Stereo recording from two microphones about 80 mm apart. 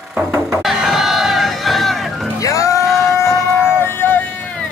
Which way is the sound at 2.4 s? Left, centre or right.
Left.